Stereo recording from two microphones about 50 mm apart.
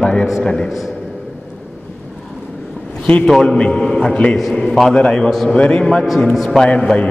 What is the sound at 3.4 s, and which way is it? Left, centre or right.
A man's voice, centre.